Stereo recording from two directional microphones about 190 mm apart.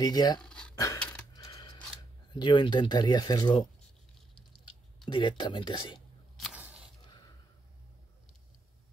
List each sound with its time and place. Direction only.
0.0 s speech: 20° left (ahead or behind)
0.4 s cutlery: 5° left (ahead or behind)
0.9 s a sound: 5° left (ahead or behind)
1.3 s coin: 20° left (ahead or behind)
2.3 s speech: 25° left (ahead or behind)
4.4 s patter: 25° left (ahead or behind)
5.0 s speech: 25° left (ahead or behind)
5.9 s a sound: centre (ahead or behind)
7.1 s a sound: 20° left (ahead or behind)